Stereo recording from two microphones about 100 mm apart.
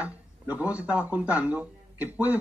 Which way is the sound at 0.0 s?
15° right (ahead or behind).